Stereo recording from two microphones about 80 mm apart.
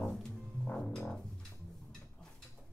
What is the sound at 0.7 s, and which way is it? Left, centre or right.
Music, centre.